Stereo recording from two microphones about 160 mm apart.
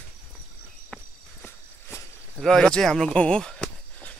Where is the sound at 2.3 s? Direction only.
5° left (ahead or behind).